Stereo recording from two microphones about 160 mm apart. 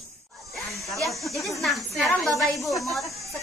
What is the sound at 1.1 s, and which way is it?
Speech, centre (ahead or behind).